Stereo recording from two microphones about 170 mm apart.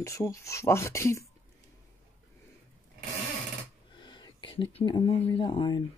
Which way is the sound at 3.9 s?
25° left (ahead or behind).